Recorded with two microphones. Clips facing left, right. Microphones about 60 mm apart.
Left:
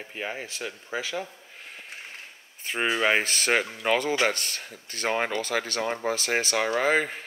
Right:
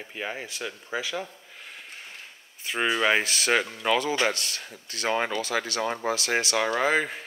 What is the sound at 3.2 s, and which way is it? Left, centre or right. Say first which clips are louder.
Speech: even; left.